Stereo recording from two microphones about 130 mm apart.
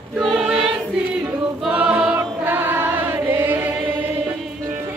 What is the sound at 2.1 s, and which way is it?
Music, 15° right (ahead or behind).